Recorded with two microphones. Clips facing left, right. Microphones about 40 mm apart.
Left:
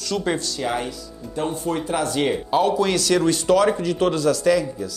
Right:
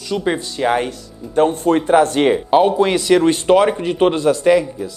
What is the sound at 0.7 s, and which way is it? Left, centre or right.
Speech, right.